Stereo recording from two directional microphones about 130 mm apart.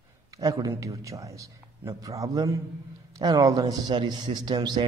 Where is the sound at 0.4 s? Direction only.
25° right (ahead or behind).